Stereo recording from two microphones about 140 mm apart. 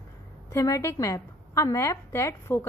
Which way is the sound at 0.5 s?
20° left (ahead or behind).